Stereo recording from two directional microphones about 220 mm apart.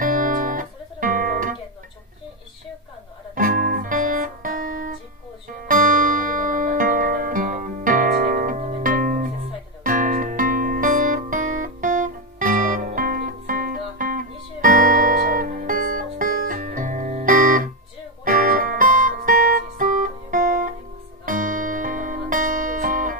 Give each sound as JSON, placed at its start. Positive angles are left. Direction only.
{"t": 0.0, "sound": "music", "side_deg": -40}
{"t": 3.3, "sound": "music", "side_deg": -40}